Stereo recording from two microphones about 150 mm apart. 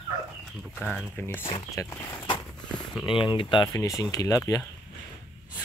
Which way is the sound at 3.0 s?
35° left (ahead or behind).